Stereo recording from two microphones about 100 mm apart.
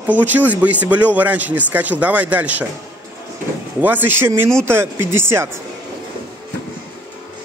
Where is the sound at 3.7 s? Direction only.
20° right (ahead or behind).